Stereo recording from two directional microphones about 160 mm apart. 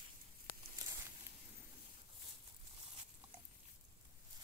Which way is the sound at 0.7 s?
20° right (ahead or behind).